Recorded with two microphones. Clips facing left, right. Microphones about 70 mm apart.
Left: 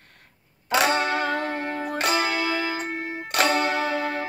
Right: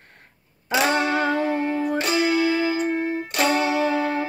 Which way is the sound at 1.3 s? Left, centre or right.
Left.